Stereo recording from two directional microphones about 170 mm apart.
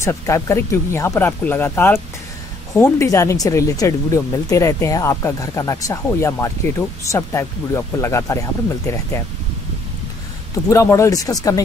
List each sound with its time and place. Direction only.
0.0 s speech: 15° left (ahead or behind)
10.7 s speech: 15° left (ahead or behind)